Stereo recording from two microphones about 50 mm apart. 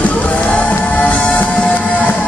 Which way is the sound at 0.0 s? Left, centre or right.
Left.